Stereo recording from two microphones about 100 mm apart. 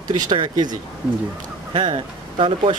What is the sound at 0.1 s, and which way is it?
Speech, 45° right (ahead or behind).